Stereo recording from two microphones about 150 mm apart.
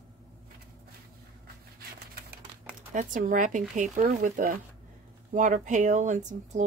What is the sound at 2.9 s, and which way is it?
Speech, 60° right (ahead or behind).